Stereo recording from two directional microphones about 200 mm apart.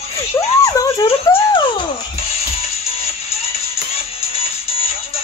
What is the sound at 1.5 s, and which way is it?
Music, 25° left (ahead or behind).